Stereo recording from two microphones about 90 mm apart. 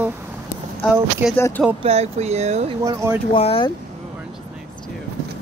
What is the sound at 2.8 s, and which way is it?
Speech, 35° right (ahead or behind).